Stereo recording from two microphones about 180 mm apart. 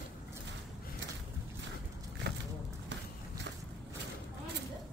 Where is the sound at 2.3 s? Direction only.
65° right (ahead or behind).